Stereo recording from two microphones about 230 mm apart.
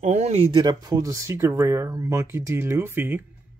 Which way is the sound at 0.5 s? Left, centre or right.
Centre.